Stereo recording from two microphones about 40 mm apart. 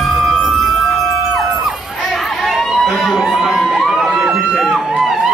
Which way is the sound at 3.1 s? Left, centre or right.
Centre.